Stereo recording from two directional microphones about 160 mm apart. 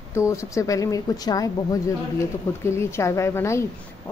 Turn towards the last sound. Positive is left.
turn(degrees=15)  # may be behind; listen again after turning